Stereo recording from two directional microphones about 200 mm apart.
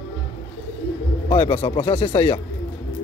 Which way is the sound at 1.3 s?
25° left (ahead or behind).